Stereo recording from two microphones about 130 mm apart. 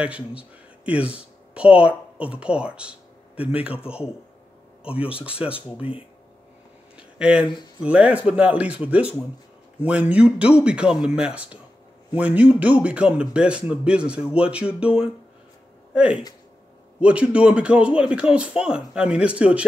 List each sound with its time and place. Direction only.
0.0 s a man's voice: 10° right (ahead or behind)
5.5 s speech: 45° left (ahead or behind)
7.0 s a sound: 10° right (ahead or behind)
7.8 s a man's voice: 10° right (ahead or behind)